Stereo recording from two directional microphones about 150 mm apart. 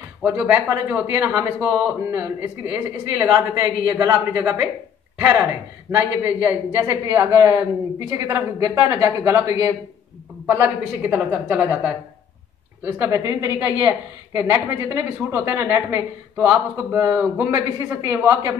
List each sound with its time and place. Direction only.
0.2 s speech: 5° right (ahead or behind)
12.8 s speech: 15° right (ahead or behind)